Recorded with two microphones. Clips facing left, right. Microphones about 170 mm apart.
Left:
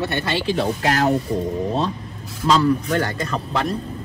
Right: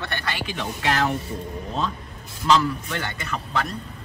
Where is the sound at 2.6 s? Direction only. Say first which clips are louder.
Left 9 dB; 40° left (ahead or behind).